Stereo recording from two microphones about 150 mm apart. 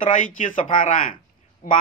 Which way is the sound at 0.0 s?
60° left (ahead or behind).